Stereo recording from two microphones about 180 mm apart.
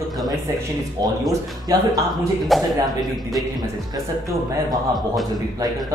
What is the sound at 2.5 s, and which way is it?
Speech, centre (ahead or behind).